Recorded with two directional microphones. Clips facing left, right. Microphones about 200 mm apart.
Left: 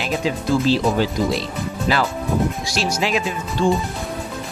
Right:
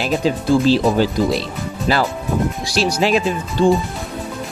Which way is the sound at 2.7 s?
35° right (ahead or behind).